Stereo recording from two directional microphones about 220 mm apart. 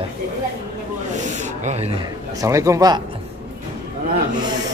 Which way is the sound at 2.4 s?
15° right (ahead or behind).